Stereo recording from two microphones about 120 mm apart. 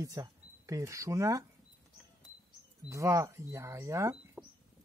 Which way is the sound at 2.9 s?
25° right (ahead or behind).